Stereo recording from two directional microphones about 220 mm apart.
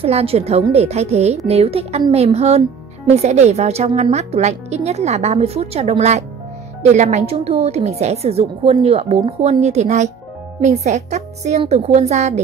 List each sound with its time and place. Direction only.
0.0 s a woman's voice: 25° right (ahead or behind)